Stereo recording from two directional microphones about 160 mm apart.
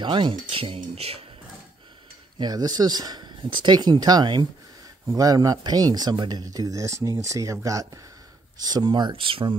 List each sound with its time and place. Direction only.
0.0 s speech: 30° right (ahead or behind)
2.3 s speech: 25° right (ahead or behind)